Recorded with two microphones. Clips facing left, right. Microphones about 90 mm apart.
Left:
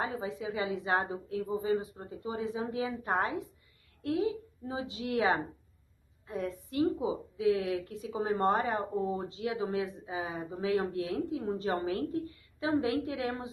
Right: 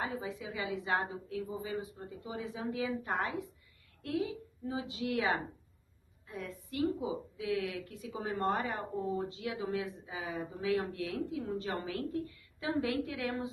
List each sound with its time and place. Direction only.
0.0 s a woman's voice: 30° left (ahead or behind)